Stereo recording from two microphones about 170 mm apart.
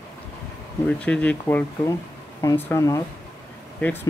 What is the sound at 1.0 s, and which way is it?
Speech, 10° left (ahead or behind).